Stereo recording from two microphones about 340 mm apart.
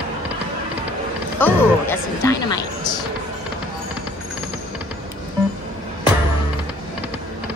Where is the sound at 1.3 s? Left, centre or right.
Centre.